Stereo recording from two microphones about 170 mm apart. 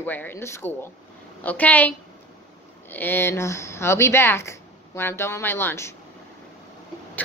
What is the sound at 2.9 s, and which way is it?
A woman's voice, 10° left (ahead or behind).